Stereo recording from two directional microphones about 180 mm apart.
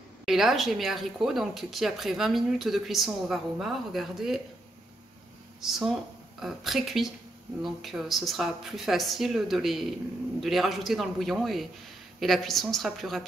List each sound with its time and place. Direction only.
0.2 s speech: centre (ahead or behind)
5.6 s speech: centre (ahead or behind)